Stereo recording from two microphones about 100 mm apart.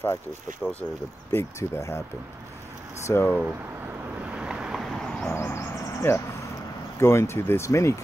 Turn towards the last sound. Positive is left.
turn(degrees=30)  # may be behind; listen again after turning